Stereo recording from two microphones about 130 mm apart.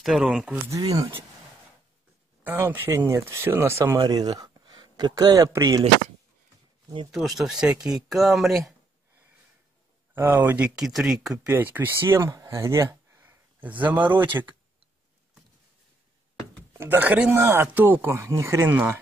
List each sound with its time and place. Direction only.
0.0 s speech: 5° right (ahead or behind)
0.7 s speech: 30° right (ahead or behind)
2.4 s speech: 15° right (ahead or behind)
7.1 s speech: centre (ahead or behind)
10.1 s speech: 15° right (ahead or behind)
11.4 s speech: 15° right (ahead or behind)
16.7 s speech: 15° right (ahead or behind)